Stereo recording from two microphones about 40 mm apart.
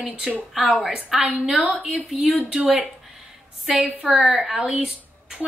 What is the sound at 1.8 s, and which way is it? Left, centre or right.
Speech, right.